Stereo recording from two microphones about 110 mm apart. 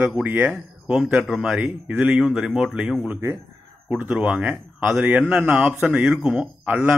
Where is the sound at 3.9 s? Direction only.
15° right (ahead or behind).